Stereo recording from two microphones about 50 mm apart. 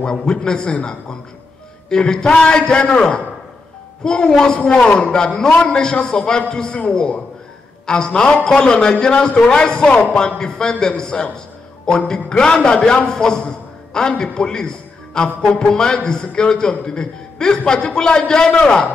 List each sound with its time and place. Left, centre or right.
0.0 s a man's voice: centre
1.9 s a man's voice: centre
11.3 s music: centre
12.1 s a man's voice: centre